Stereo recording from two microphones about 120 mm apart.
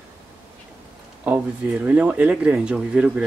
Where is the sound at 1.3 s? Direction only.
15° right (ahead or behind).